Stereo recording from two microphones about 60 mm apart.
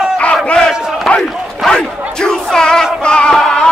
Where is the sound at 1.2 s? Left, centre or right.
Centre.